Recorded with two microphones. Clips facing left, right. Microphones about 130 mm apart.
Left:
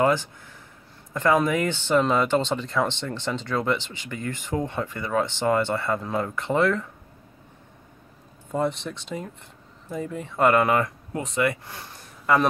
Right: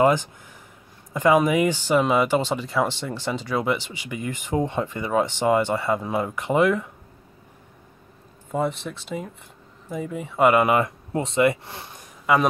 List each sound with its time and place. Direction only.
0.0 s speech: 15° right (ahead or behind)
8.5 s speech: centre (ahead or behind); by 11.9 s 25° right (ahead or behind)
12.3 s speech: 10° right (ahead or behind)